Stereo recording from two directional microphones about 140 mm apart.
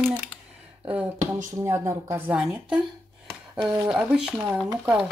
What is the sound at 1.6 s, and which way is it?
Speech, 25° right (ahead or behind).